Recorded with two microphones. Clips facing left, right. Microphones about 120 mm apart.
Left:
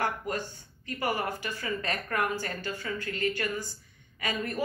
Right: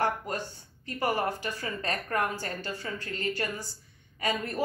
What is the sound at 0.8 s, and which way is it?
Speech, 40° right (ahead or behind).